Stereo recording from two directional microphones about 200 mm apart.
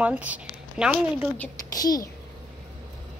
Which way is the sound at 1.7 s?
20° left (ahead or behind).